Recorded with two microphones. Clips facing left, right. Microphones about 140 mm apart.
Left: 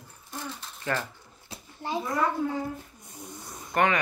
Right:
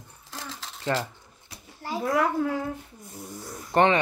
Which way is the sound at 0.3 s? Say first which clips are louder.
Left 1 dB; 90° right.